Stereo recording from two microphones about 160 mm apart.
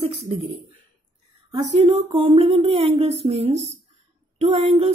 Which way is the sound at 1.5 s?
45° right (ahead or behind).